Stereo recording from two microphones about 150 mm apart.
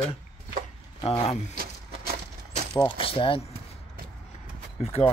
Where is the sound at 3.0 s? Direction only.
35° left (ahead or behind).